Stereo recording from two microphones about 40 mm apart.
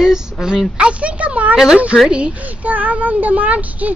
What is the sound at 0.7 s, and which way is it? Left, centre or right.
A child's voice, right.